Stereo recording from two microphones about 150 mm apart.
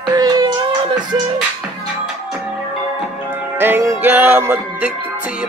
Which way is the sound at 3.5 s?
15° right (ahead or behind).